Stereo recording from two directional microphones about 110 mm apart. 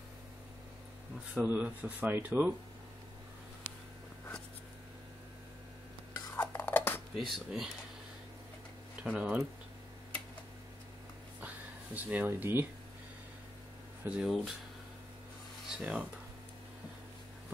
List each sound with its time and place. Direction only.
1.3 s speech: 15° right (ahead or behind)
6.3 s cutlery: 20° left (ahead or behind)
7.2 s speech: centre (ahead or behind)
9.0 s speech: 10° right (ahead or behind)
11.4 s speech: 15° right (ahead or behind)
14.0 s speech: 5° right (ahead or behind)
15.8 s speech: 5° right (ahead or behind)